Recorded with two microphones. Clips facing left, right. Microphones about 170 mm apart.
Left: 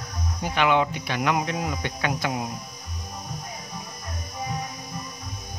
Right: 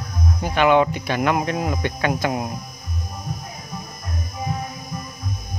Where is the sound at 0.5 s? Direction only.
50° right (ahead or behind).